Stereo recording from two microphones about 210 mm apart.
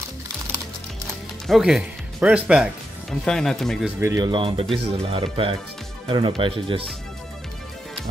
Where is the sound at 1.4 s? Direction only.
Centre (ahead or behind).